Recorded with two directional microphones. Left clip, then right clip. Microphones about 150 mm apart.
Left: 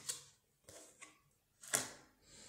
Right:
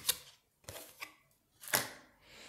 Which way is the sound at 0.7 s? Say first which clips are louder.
Right 9 dB; 25° right (ahead or behind).